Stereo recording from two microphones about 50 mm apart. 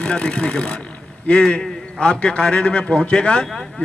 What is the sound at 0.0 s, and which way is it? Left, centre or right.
A man's voice, centre.